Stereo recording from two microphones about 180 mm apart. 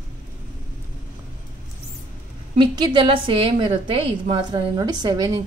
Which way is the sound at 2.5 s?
25° right (ahead or behind).